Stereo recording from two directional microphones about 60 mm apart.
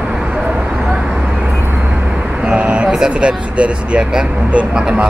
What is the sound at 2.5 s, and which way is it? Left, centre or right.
Vehicle, centre.